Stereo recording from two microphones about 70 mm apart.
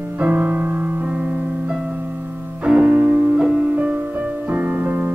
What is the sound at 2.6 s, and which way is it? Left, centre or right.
Music, centre.